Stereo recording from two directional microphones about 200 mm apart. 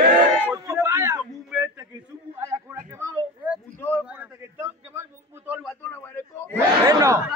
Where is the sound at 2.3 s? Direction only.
15° right (ahead or behind).